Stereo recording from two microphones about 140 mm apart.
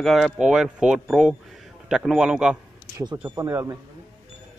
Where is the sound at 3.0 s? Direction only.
25° right (ahead or behind).